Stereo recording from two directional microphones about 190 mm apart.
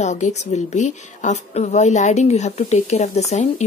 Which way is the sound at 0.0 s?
40° left (ahead or behind).